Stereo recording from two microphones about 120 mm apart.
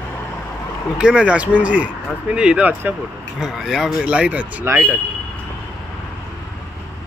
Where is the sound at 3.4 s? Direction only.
5° right (ahead or behind).